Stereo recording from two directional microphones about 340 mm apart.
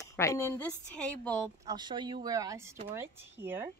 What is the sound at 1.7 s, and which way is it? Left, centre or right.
Speech, centre.